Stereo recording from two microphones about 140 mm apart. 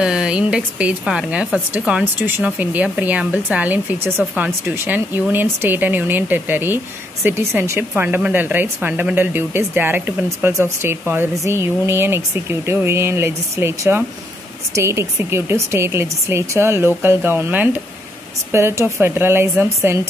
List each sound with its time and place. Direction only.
0.0 s speech: 5° right (ahead or behind)